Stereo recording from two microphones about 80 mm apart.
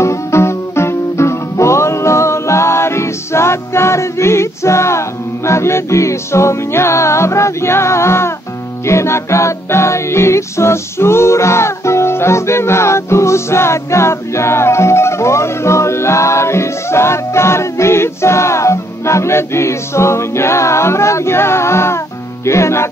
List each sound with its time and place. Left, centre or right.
0.0 s music: left